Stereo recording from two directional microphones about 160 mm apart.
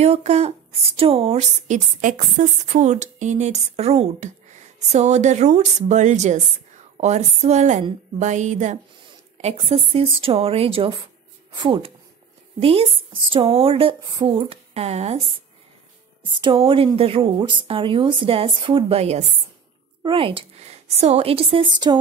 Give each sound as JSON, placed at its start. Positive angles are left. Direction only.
{"t": 0.0, "sound": "a woman's voice", "side_deg": -45}
{"t": 16.3, "sound": "a woman's voice", "side_deg": -30}